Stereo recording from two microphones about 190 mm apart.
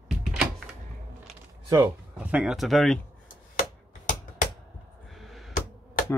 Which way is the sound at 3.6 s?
45° left (ahead or behind).